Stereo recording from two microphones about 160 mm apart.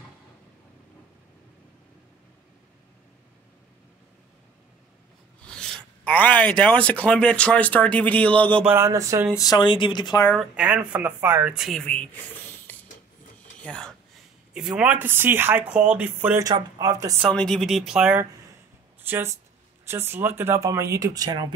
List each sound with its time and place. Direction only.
5.4 s filing: 5° left (ahead or behind)
6.0 s speech: 10° left (ahead or behind)
8.6 s speech: 15° right (ahead or behind)
9.4 s speech: 25° left (ahead or behind)
10.3 s speech: 5° right (ahead or behind)
12.7 s ratchet: 10° left (ahead or behind)
13.7 s speech: 5° left (ahead or behind)
14.5 s speech: 5° right (ahead or behind)
16.3 s speech: 25° right (ahead or behind)
17.3 s speech: 5° left (ahead or behind); by 21.5 s 25° right (ahead or behind)